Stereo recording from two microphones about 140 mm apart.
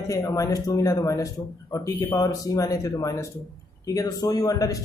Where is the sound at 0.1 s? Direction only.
25° left (ahead or behind).